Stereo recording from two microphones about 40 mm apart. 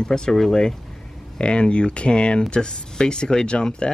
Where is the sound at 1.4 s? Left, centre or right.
Left.